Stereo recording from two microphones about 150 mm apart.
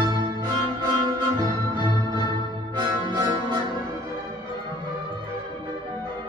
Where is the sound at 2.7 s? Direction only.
30° right (ahead or behind).